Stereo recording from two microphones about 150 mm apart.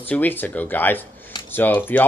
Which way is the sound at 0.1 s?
10° left (ahead or behind).